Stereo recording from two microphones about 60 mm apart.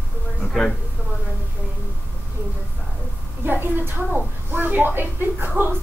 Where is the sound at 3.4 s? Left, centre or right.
Right.